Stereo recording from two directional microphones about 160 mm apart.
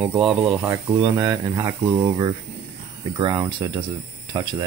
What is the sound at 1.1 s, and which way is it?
Speech, 20° right (ahead or behind).